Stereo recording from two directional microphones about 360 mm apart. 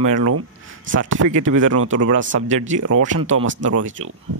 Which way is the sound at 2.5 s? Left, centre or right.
Centre.